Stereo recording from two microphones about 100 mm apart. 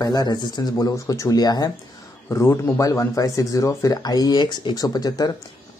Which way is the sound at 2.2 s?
25° left (ahead or behind).